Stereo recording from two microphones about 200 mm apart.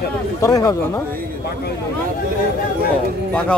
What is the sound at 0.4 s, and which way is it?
Speech, 15° left (ahead or behind).